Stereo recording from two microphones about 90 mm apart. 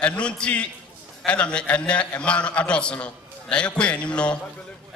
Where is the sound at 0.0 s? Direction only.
15° left (ahead or behind).